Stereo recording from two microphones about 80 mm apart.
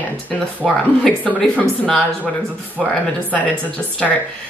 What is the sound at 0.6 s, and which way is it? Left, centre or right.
Speech, centre.